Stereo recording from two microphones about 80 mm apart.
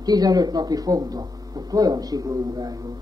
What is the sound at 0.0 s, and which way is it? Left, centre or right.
Speech, right.